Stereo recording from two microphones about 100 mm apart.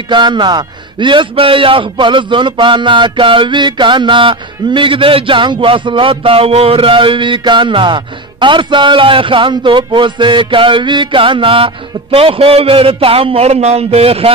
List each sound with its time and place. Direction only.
0.1 s a man's voice: 50° right (ahead or behind); by 14.3 s 80° right